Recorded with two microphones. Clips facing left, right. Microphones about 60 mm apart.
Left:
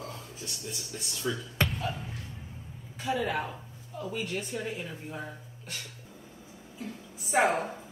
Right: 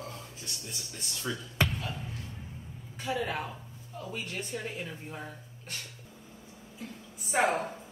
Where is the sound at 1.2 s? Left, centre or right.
Centre.